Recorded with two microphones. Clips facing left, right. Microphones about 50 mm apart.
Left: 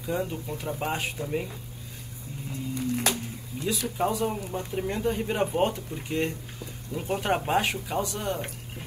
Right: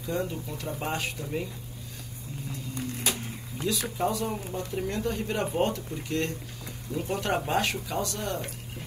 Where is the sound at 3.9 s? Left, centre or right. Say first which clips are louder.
Left 2 dB; centre.